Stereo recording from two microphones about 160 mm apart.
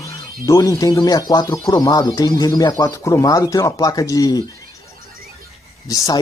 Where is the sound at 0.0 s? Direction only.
20° left (ahead or behind).